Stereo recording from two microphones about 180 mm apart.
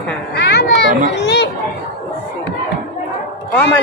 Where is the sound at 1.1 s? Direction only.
70° left (ahead or behind).